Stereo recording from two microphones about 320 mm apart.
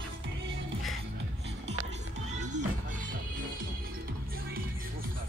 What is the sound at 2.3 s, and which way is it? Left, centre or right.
Music, right.